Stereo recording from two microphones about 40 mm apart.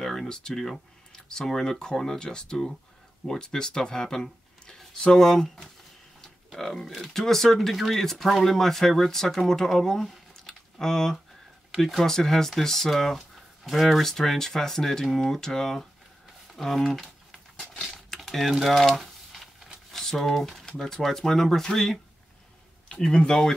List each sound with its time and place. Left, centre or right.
0.0 s speech: centre
16.5 s a sound: centre
18.5 s speech: centre
18.9 s a sound: centre
19.9 s speech: centre
20.6 s speech: centre
23.1 s speech: centre